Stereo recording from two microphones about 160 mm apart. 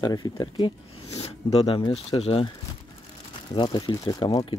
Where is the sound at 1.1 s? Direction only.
40° left (ahead or behind).